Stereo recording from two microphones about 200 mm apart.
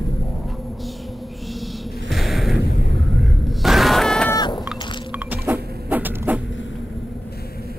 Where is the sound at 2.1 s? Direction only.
Centre (ahead or behind).